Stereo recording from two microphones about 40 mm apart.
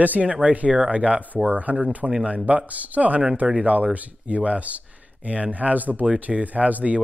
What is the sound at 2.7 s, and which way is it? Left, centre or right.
Speech, right.